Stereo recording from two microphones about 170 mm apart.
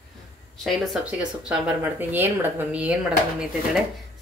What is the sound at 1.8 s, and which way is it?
A woman's voice, 10° right (ahead or behind).